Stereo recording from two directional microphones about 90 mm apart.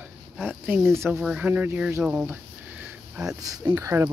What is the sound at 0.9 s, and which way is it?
Speech, 30° right (ahead or behind).